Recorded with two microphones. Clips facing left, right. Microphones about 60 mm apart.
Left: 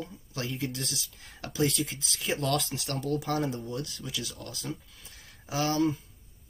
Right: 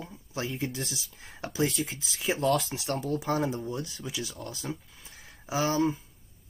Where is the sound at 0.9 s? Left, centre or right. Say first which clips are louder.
Even; right.